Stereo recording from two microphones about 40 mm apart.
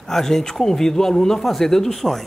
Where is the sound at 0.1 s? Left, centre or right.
Centre.